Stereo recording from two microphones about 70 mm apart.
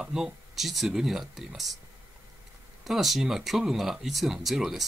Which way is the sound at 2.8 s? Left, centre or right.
Centre.